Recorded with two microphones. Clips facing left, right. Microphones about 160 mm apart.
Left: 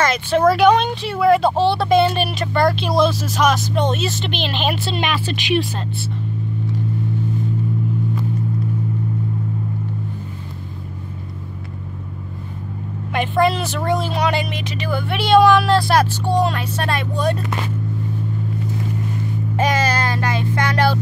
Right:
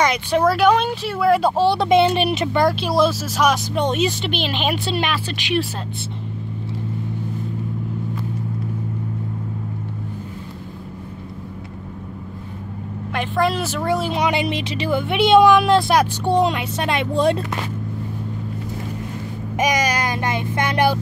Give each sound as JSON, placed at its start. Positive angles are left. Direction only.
{"t": 0.0, "sound": "speech", "side_deg": -15}
{"t": 4.9, "sound": "speech", "side_deg": 0}
{"t": 13.1, "sound": "speech", "side_deg": 0}
{"t": 14.1, "sound": "speech", "side_deg": -20}
{"t": 19.5, "sound": "speech", "side_deg": -15}